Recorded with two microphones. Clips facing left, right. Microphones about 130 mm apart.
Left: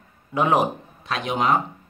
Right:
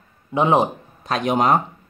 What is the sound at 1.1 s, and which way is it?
Speech, 45° right (ahead or behind).